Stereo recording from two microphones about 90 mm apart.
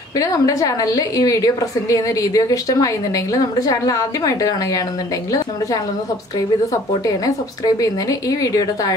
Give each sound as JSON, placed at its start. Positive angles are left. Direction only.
{"t": 0.2, "sound": "a woman's voice", "side_deg": 40}
{"t": 7.1, "sound": "a woman's voice", "side_deg": 40}